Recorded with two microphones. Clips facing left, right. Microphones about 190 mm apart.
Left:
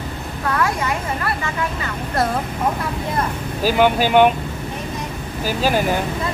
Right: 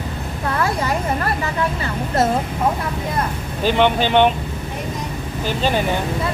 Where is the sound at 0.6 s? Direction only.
35° right (ahead or behind).